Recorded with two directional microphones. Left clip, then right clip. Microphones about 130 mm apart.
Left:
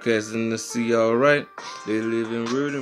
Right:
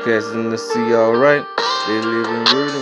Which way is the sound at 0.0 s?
20° left (ahead or behind).